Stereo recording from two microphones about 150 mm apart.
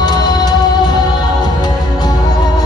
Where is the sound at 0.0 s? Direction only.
30° left (ahead or behind).